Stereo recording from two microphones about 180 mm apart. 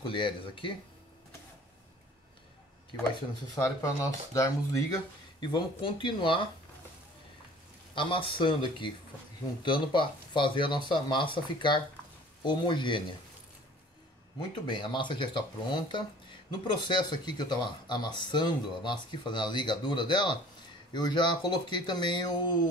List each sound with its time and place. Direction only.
0.0 s speech: 30° left (ahead or behind)
3.6 s speech: 20° left (ahead or behind)
7.9 s speech: 30° left (ahead or behind)
14.4 s speech: 25° left (ahead or behind)